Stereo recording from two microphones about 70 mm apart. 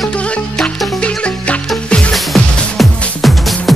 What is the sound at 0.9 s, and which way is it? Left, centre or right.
Music, centre.